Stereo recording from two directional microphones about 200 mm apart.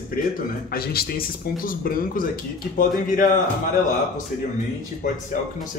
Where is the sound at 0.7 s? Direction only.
50° left (ahead or behind).